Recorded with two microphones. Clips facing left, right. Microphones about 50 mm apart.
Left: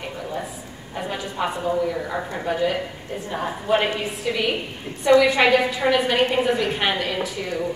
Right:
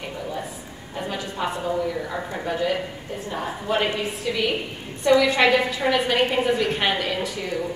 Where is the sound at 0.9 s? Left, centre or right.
Centre.